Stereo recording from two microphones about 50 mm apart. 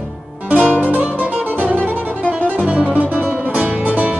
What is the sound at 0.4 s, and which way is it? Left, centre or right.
Music, right.